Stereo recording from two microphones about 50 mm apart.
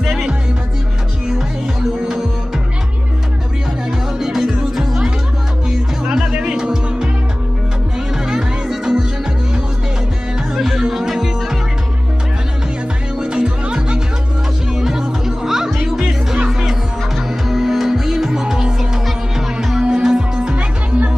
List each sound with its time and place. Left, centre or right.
0.0 s music: centre
4.2 s music: centre
8.3 s music: centre
10.5 s music: centre
13.2 s music: centre